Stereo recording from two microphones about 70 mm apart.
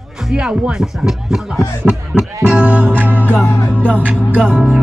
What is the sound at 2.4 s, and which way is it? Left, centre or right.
Music, right.